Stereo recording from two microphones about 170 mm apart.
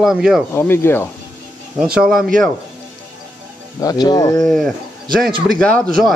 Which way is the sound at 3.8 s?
25° left (ahead or behind).